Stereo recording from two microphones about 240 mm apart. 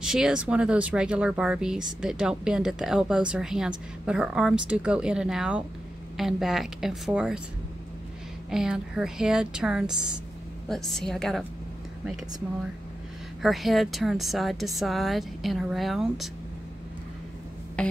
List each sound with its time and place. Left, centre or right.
0.0 s speech: centre
8.5 s speech: centre
9.8 s a woman's voice: centre
10.7 s speech: centre
13.4 s speech: centre
17.8 s music: centre